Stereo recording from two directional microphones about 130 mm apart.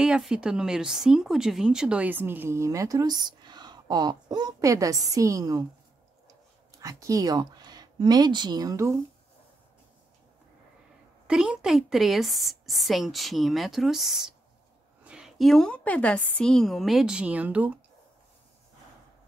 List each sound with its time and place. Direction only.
0.0 s speech: 5° right (ahead or behind); by 5.7 s 30° right (ahead or behind)
6.8 s speech: 25° right (ahead or behind)
11.2 s a woman's voice: 5° right (ahead or behind)